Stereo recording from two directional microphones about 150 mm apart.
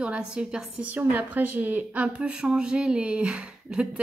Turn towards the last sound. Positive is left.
turn(degrees=-5)  # may be behind; listen again after turning